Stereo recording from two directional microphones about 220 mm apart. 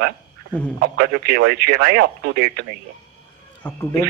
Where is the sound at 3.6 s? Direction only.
10° left (ahead or behind).